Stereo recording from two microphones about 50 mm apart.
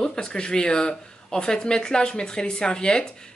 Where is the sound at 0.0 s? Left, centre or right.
Centre.